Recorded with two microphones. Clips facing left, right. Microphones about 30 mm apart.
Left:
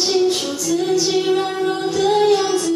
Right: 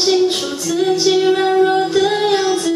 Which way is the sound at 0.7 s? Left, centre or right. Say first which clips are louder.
Right 3 dB; right.